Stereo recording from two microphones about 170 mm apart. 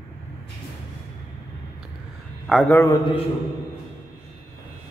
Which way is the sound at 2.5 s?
5° left (ahead or behind).